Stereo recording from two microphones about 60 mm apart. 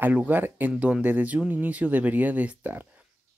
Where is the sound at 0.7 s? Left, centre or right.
Centre.